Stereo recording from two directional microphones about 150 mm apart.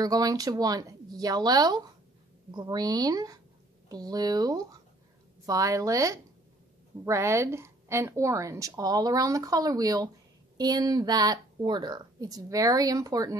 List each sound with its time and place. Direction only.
0.0 s speech: 25° right (ahead or behind)